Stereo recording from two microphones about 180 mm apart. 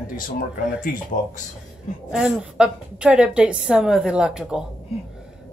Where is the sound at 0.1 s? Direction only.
50° left (ahead or behind).